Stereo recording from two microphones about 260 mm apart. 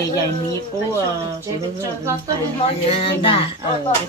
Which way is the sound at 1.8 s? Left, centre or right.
Centre.